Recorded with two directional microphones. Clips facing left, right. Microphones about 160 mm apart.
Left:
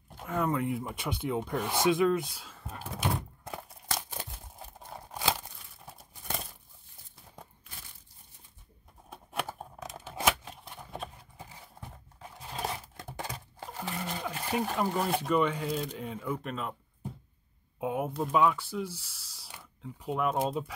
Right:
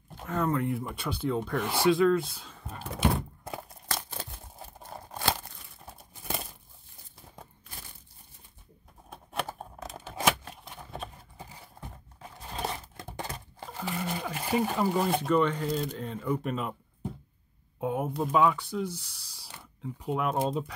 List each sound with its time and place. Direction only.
0.2 s speech: 10° left (ahead or behind)
3.6 s a sound: 10° left (ahead or behind)
4.7 s crumpling: centre (ahead or behind)
9.1 s computer keyboard: centre (ahead or behind)
10.0 s scissors: 5° left (ahead or behind)
10.4 s a sound: centre (ahead or behind)
12.2 s crumpling: 5° left (ahead or behind)
13.3 s a sound: 10° left (ahead or behind)
13.8 s speech: 5° right (ahead or behind)
17.7 s speech: 5° left (ahead or behind)